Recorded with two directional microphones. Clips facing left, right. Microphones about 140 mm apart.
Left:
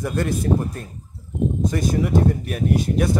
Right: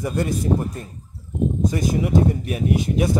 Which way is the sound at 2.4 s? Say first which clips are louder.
Even; 15° right (ahead or behind).